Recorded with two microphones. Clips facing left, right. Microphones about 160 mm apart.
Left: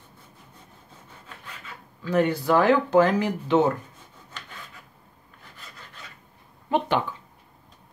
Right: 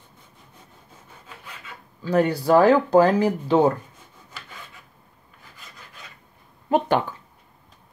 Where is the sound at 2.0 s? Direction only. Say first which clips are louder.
Right 3 dB; 35° right (ahead or behind).